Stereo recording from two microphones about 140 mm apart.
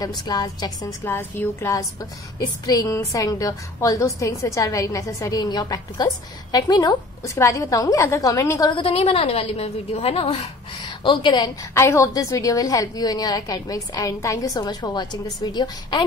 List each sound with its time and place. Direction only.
0.0 s a woman's voice: 30° left (ahead or behind)
8.7 s a woman's voice: 45° left (ahead or behind)
11.1 s a woman's voice: 30° left (ahead or behind)